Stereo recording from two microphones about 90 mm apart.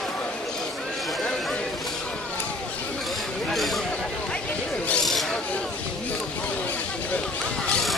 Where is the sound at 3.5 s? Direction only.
Centre (ahead or behind).